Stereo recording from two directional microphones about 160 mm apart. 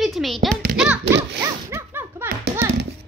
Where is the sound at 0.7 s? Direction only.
5° right (ahead or behind).